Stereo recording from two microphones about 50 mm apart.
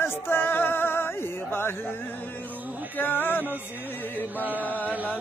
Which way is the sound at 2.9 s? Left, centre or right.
Left.